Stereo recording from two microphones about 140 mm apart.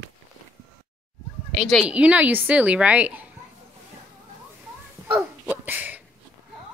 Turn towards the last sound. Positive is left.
turn(degrees=-15)  # may be behind; listen again after turning